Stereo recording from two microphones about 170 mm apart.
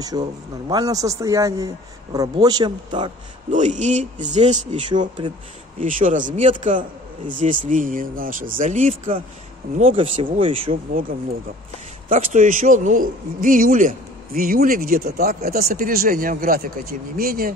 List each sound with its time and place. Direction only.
0.1 s speech: 20° right (ahead or behind)
3.5 s speech: 45° right (ahead or behind)
4.7 s speech: 30° right (ahead or behind)
5.8 s speech: 50° right (ahead or behind)
9.8 s speech: 35° right (ahead or behind)
12.1 s a man's voice: 50° right (ahead or behind)